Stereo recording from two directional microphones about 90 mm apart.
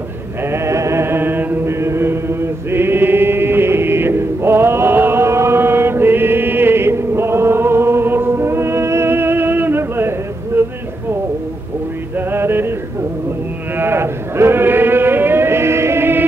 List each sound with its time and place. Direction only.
0.4 s chant: 30° right (ahead or behind)
12.2 s music: 25° right (ahead or behind)
13.7 s chant: 25° right (ahead or behind)